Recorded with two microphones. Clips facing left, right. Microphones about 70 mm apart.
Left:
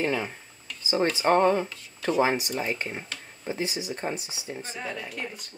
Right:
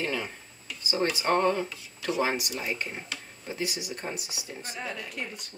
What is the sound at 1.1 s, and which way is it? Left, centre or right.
Speech, left.